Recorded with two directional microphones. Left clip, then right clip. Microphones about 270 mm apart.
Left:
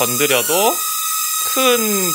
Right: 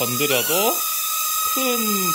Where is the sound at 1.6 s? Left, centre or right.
Centre.